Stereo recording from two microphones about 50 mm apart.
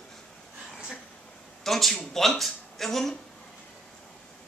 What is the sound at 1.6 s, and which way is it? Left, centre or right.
Speech, centre.